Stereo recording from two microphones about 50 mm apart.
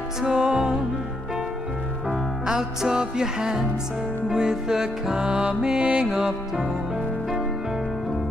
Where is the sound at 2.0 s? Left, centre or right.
Centre.